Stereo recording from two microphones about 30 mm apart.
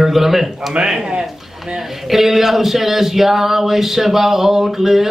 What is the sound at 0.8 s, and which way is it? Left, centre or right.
Speech, right.